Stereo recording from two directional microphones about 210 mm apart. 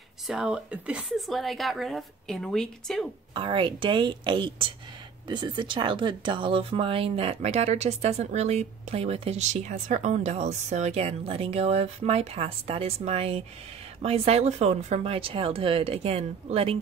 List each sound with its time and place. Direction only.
0.3 s speech: 5° right (ahead or behind)
3.3 s speech: 25° right (ahead or behind)